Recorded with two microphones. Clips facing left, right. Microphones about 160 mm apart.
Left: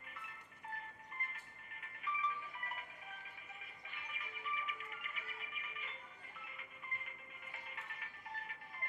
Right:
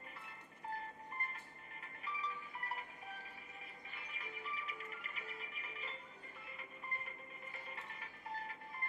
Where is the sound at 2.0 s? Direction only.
35° right (ahead or behind).